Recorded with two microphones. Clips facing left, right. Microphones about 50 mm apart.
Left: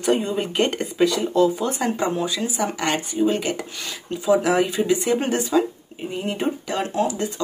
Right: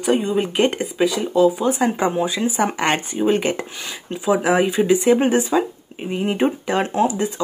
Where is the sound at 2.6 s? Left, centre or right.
Right.